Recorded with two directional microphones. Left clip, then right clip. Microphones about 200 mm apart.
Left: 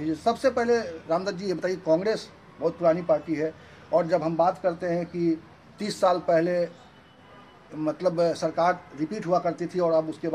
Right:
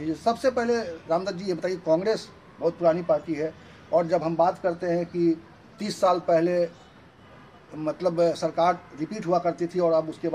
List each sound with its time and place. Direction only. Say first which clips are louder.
0.0 s a man's voice: even; 10° left (ahead or behind)
7.8 s a man's voice: right 1 dB; 10° left (ahead or behind)